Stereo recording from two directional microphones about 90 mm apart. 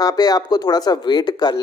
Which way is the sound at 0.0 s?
45° left (ahead or behind).